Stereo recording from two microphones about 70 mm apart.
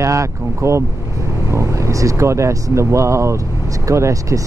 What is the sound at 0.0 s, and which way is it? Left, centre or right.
Speech, right.